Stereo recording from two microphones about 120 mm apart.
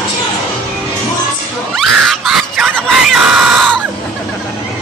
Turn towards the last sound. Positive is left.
turn(degrees=-5)  # may be behind; listen again after turning